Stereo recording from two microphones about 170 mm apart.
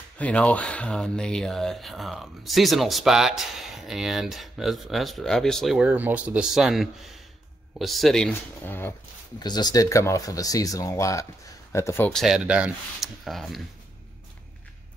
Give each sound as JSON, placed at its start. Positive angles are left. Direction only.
{"t": 0.2, "sound": "speech", "side_deg": 5}
{"t": 9.4, "sound": "speech", "side_deg": 25}
{"t": 12.1, "sound": "speech", "side_deg": 0}